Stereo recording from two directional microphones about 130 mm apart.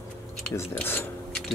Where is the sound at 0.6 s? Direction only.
15° left (ahead or behind).